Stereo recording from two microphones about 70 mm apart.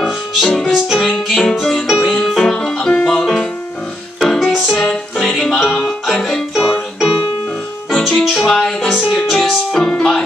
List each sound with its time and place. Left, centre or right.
0.0 s music: centre
7.9 s music: centre
9.0 s music: centre
9.3 s music: centre